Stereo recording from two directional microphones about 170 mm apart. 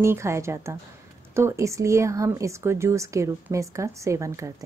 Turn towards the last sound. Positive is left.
turn(degrees=-15)  # may be behind; listen again after turning